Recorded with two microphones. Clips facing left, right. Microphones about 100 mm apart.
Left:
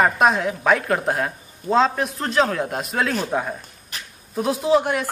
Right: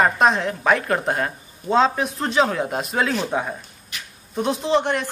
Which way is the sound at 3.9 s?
40° left (ahead or behind).